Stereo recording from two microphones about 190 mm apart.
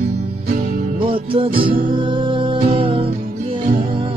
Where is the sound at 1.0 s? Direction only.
25° right (ahead or behind).